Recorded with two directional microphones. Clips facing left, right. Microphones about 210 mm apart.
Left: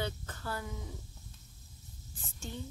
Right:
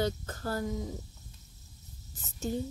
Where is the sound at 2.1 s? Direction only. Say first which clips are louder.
Right 10 dB; 40° right (ahead or behind).